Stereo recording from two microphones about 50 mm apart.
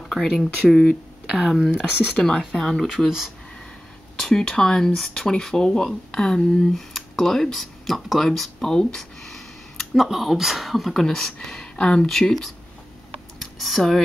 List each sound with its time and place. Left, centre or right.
0.3 s speech: centre
1.8 s speech: centre
2.2 s speech: centre
4.2 s speech: centre
12.1 s speech: centre
13.4 s a sound: centre